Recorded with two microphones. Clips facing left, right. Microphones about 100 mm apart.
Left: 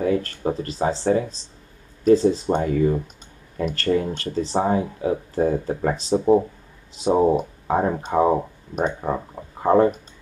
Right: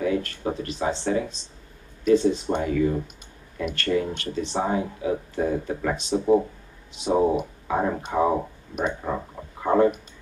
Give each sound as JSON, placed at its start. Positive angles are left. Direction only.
{"t": 0.0, "sound": "speech", "side_deg": 35}
{"t": 7.3, "sound": "speech", "side_deg": 35}
{"t": 9.6, "sound": "a sound", "side_deg": 40}